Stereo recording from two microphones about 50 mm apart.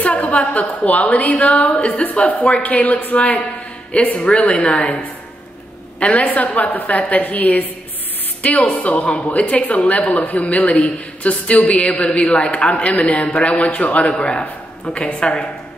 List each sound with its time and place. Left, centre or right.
0.0 s a sound: left
0.5 s a man's voice: left
5.9 s a woman's voice: left
8.6 s a man's voice: left